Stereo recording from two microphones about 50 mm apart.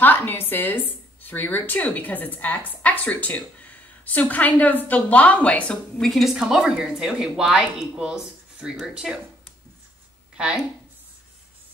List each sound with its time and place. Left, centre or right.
0.0 s speech: left
5.9 s a woman's voice: centre
6.3 s speech: centre
10.3 s a woman's voice: centre